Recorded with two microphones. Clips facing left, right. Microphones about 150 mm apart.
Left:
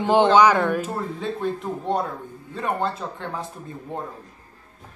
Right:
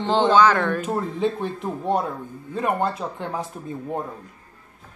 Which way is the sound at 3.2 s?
15° right (ahead or behind).